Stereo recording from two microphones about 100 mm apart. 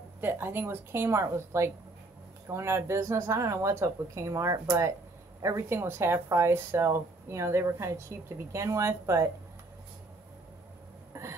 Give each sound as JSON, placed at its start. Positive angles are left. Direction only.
{"t": 0.2, "sound": "speech", "side_deg": -20}